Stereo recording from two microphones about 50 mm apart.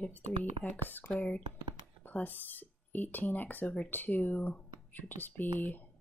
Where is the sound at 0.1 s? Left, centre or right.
Left.